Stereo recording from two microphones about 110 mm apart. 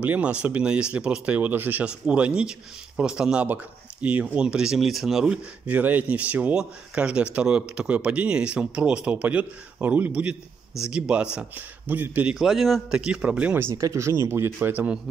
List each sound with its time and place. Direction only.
0.0 s speech: 15° right (ahead or behind)
12.4 s speech: centre (ahead or behind)
13.7 s speech: 30° right (ahead or behind)